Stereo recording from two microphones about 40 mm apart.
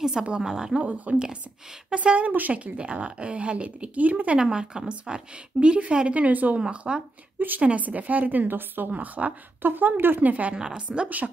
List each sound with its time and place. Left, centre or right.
0.0 s a woman's voice: centre
0.8 s a woman's voice: right
1.1 s a woman's voice: right
4.4 s a woman's voice: centre; by 6.6 s right
6.6 s a woman's voice: right
7.3 s a woman's voice: right
7.6 s a woman's voice: right
8.9 s a woman's voice: right
9.6 s speech: right
10.2 s a woman's voice: right
10.6 s a woman's voice: right